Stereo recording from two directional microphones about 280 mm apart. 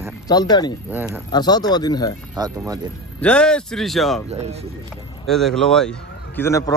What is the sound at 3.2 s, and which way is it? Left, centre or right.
Speech, centre.